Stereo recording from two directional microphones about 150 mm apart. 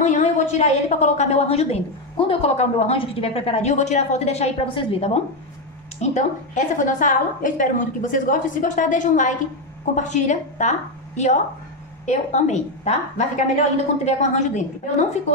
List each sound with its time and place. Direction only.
0.0 s a woman's voice: 55° left (ahead or behind)